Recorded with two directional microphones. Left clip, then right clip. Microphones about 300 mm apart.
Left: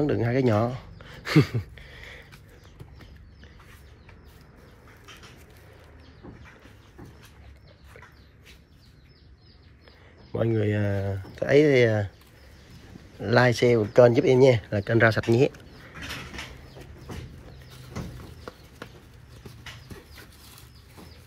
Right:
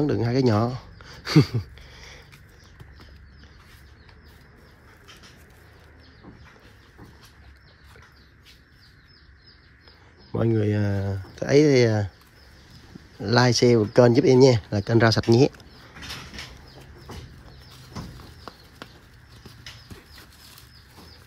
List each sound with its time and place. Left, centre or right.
0.0 s speech: centre
10.3 s speech: right
13.2 s speech: centre